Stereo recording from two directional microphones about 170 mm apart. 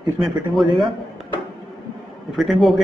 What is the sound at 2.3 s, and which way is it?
Speech, centre (ahead or behind).